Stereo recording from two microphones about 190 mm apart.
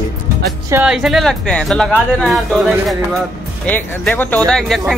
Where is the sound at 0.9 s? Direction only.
Centre (ahead or behind).